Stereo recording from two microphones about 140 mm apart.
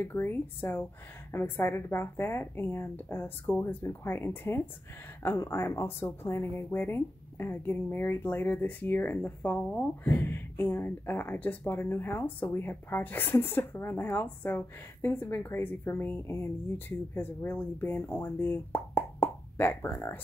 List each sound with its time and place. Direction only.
0.0 s speech: 15° left (ahead or behind)